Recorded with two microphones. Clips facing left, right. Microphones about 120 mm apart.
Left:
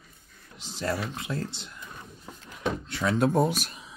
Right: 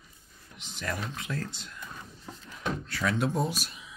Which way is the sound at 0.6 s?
35° left (ahead or behind).